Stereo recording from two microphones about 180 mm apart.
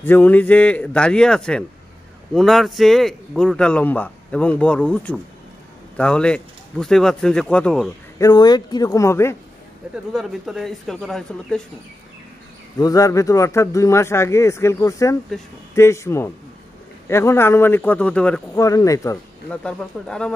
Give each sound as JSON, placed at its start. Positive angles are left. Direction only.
{"t": 0.0, "sound": "speech", "side_deg": 10}
{"t": 8.2, "sound": "speech", "side_deg": 20}
{"t": 10.1, "sound": "speech", "side_deg": 0}
{"t": 12.7, "sound": "speech", "side_deg": 20}
{"t": 18.6, "sound": "speech", "side_deg": 20}
{"t": 19.5, "sound": "speech", "side_deg": 5}